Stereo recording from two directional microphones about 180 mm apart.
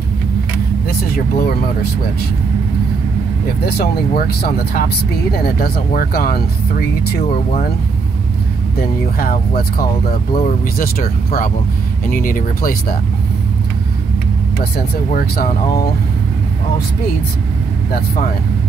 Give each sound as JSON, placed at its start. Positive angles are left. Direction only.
{"t": 0.8, "sound": "speech", "side_deg": 60}
{"t": 3.6, "sound": "speech", "side_deg": 60}
{"t": 8.7, "sound": "speech", "side_deg": 55}
{"t": 14.6, "sound": "speech", "side_deg": 55}